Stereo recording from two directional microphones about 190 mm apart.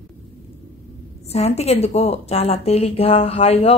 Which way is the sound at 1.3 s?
35° left (ahead or behind).